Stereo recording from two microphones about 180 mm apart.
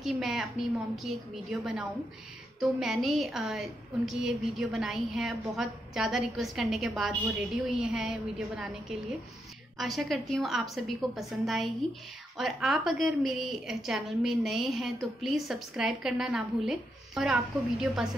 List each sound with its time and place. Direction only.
0.0 s a woman's voice: centre (ahead or behind)